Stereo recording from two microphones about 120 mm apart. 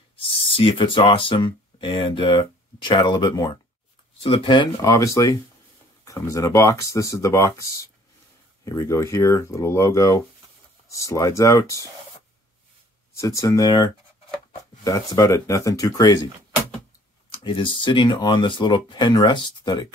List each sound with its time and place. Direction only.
0.2 s speech: 50° left (ahead or behind)
4.2 s speech: 45° left (ahead or behind)
4.8 s speech: 25° left (ahead or behind)
13.1 s speech: 25° left (ahead or behind)
17.3 s speech: 45° left (ahead or behind)